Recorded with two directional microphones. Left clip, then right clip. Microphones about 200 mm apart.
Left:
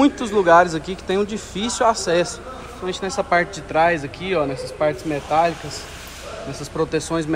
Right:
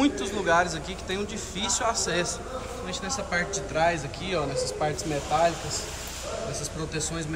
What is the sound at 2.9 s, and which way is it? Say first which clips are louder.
A man's voice: left 11 dB; 15° left (ahead or behind).